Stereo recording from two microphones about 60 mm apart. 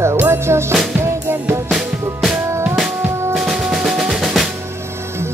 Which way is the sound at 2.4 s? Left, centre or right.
Right.